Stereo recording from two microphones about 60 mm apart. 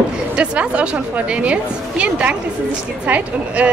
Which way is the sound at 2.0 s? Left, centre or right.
Right.